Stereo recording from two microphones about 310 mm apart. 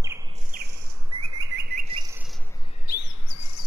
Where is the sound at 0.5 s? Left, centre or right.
Right.